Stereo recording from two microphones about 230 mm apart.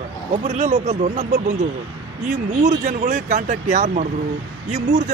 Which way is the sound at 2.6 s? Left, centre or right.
Right.